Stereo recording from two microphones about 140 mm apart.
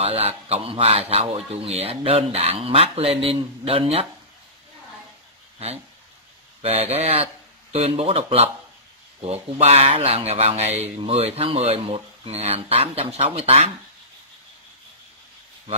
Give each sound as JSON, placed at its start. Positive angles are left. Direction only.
{"t": 0.0, "sound": "a man's voice", "side_deg": -45}
{"t": 6.6, "sound": "a man's voice", "side_deg": -45}